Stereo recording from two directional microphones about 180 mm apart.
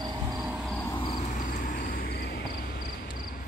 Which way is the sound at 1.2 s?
45° left (ahead or behind).